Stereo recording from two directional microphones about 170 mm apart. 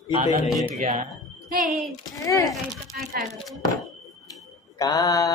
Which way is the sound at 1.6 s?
Centre (ahead or behind).